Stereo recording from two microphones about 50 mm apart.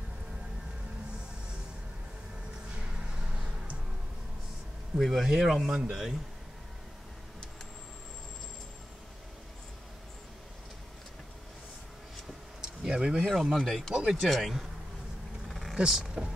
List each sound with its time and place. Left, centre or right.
4.9 s speech: centre
12.6 s a sound: centre
13.3 s speech: centre
13.6 s speech: centre
15.4 s a sound: centre
15.7 s speech: centre